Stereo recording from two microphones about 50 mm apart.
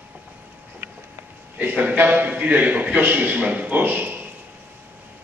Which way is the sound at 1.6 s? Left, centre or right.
Right.